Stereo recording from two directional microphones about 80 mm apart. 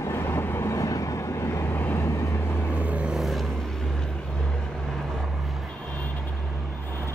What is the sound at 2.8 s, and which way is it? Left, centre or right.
Vehicle, centre.